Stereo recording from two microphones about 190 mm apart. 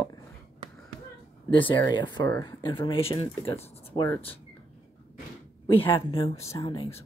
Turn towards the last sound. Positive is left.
turn(degrees=20)  # may be behind; listen again after turning